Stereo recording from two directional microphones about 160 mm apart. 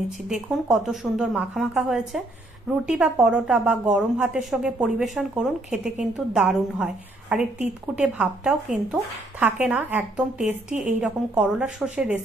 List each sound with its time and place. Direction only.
0.3 s a woman's voice: centre (ahead or behind)